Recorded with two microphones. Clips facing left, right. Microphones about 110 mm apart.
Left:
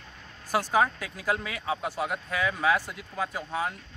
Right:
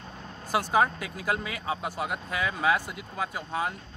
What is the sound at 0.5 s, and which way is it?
Speech, 10° right (ahead or behind).